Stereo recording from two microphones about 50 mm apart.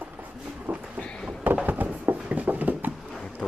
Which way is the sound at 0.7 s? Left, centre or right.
Right.